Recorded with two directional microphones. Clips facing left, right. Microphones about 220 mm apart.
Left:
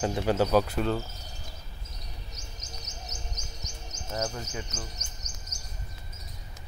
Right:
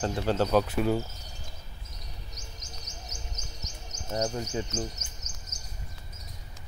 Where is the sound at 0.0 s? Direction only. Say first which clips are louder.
Left 1 dB; 10° left (ahead or behind).